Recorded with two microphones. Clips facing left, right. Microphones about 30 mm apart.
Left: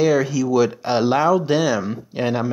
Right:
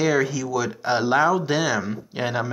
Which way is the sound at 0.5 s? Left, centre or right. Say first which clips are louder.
Left 5 dB; centre.